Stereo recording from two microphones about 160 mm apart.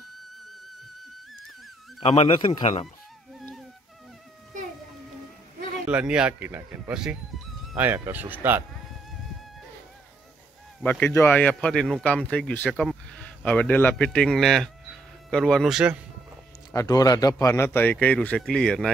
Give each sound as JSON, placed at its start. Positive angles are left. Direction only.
{"t": 2.0, "sound": "speech", "side_deg": 40}
{"t": 5.9, "sound": "speech", "side_deg": -5}
{"t": 10.8, "sound": "speech", "side_deg": 10}
{"t": 16.7, "sound": "speech", "side_deg": 25}